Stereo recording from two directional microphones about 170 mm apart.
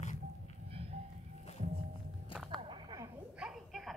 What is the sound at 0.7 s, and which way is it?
Train, 35° right (ahead or behind).